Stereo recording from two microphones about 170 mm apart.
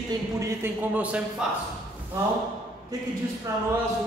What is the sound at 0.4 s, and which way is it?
Speech, 10° right (ahead or behind).